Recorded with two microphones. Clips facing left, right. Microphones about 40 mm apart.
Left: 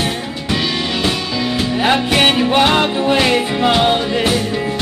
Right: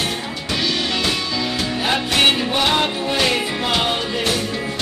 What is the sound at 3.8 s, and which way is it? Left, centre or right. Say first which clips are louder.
Music: left 6 dB; left.